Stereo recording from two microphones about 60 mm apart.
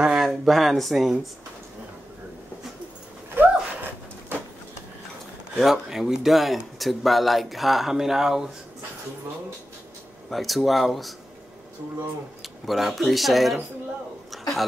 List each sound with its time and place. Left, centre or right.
0.2 s speech: centre
3.3 s a sound: right
5.6 s speech: centre
10.3 s speech: centre
12.4 s speech: centre
14.3 s a sound: centre